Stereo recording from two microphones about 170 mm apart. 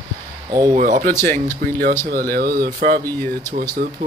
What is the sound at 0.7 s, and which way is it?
Speech, 50° right (ahead or behind).